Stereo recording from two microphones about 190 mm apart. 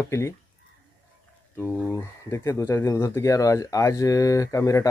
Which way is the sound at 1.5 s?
15° left (ahead or behind).